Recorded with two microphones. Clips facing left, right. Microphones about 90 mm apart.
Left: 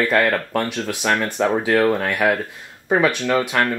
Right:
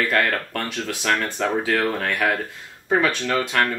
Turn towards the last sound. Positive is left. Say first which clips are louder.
# left 3 dB
turn(degrees=10)  # may be behind; listen again after turning